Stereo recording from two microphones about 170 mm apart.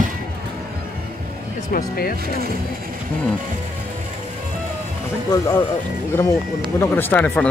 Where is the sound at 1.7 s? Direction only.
60° left (ahead or behind).